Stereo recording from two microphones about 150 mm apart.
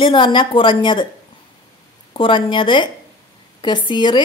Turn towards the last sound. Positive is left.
turn(degrees=30)  # may be behind; listen again after turning